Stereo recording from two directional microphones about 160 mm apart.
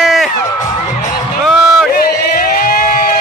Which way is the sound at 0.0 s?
Centre (ahead or behind).